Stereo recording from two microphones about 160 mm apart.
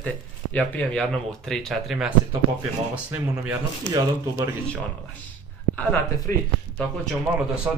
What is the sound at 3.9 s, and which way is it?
Speech, 20° right (ahead or behind).